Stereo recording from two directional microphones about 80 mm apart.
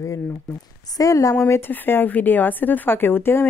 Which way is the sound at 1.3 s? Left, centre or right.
Left.